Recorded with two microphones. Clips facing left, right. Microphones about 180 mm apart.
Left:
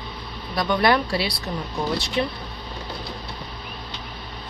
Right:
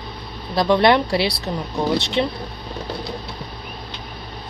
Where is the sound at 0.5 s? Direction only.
25° right (ahead or behind).